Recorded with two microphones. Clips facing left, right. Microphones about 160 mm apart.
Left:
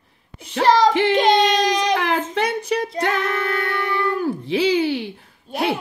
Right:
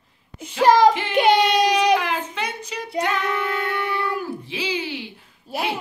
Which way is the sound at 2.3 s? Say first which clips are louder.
Left 8 dB; 60° left (ahead or behind).